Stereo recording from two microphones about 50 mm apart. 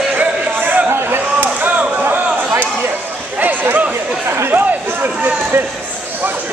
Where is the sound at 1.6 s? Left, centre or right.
Right.